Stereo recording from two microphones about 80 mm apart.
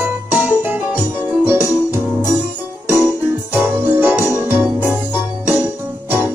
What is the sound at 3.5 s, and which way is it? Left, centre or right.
Music, right.